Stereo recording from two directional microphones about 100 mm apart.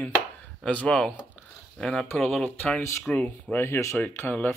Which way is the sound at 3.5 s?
25° left (ahead or behind).